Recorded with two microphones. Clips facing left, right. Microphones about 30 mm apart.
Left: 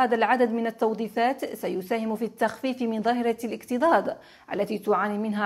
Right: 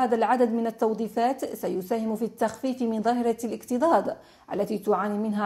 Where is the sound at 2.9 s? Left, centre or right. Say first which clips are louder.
Even; left.